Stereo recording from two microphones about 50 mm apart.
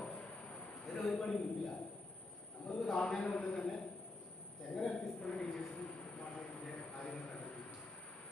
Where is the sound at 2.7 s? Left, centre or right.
Centre.